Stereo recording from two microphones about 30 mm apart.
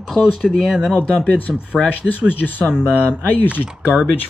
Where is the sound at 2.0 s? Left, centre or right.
Left.